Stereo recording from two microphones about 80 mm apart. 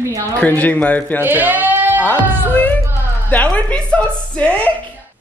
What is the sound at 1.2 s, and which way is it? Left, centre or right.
Speech, right.